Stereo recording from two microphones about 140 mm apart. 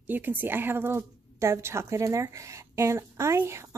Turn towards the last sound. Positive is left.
turn(degrees=-20)  # may be behind; listen again after turning